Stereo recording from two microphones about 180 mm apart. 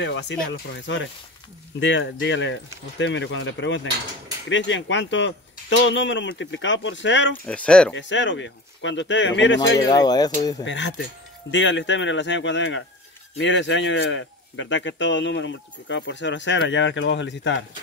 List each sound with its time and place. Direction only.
0.0 s speech: 80° left
0.5 s a man's voice: 90° left
7.4 s speech: 5° left (ahead or behind)
7.9 s a man's voice: 90° left
9.8 s speech: 20° left (ahead or behind)
10.6 s a man's voice: 90° left